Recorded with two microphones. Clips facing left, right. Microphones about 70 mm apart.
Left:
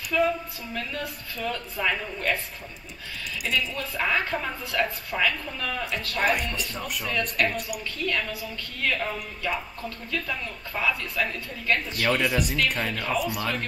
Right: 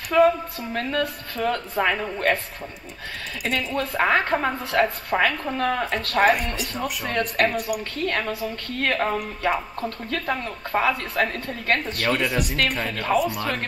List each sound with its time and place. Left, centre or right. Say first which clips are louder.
0.1 s a woman's voice: right 7 dB; right
3.4 s a woman's voice: right 4 dB; right
12.1 s speech: right 1 dB; centre
12.9 s a woman's voice: right 5 dB; right